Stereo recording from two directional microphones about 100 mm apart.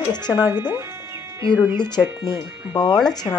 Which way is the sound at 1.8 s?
45° left (ahead or behind).